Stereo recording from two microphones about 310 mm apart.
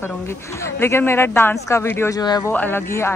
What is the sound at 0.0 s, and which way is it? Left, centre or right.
Speech, centre.